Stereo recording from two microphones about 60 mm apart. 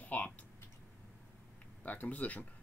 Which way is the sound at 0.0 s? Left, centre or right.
Left.